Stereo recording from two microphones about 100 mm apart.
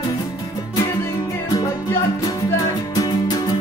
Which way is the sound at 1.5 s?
35° left (ahead or behind).